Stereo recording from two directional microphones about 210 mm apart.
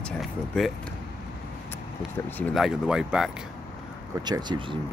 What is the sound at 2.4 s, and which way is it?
Speech, centre (ahead or behind).